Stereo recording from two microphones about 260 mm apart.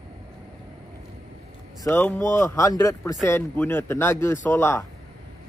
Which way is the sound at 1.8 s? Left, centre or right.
Centre.